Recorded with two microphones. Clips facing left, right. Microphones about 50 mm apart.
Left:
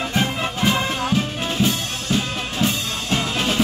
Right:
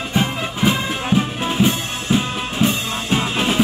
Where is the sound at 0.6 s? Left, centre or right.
Centre.